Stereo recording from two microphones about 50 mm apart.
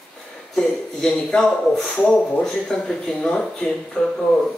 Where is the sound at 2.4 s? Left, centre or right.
Centre.